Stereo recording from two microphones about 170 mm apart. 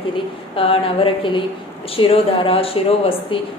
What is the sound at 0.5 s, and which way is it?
A woman's voice, 30° left (ahead or behind).